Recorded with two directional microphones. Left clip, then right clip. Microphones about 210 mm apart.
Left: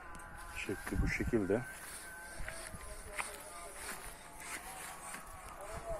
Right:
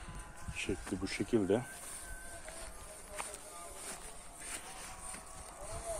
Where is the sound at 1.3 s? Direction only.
20° right (ahead or behind).